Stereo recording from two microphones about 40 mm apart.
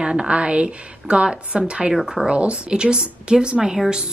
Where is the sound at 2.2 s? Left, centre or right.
Right.